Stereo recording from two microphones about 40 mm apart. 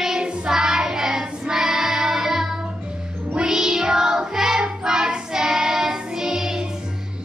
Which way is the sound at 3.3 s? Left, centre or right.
Centre.